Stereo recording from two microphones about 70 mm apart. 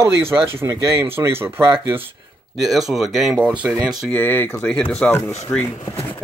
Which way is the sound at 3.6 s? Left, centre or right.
Right.